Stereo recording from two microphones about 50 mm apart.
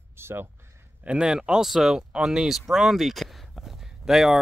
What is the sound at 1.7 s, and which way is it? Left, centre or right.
Speech, centre.